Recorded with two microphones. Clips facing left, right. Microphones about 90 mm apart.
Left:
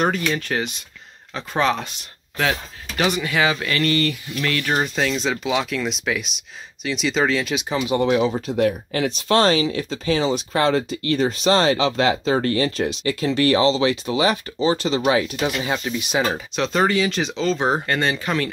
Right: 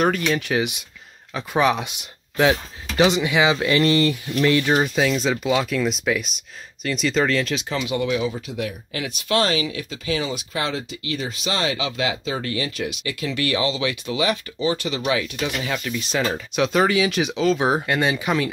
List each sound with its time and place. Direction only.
0.2 s speech: 10° right (ahead or behind)
4.7 s speech: 5° right (ahead or behind)
7.7 s speech: 25° left (ahead or behind)
8.0 s speech: 40° left (ahead or behind)
16.0 s speech: 10° left (ahead or behind)
16.5 s speech: 5° right (ahead or behind)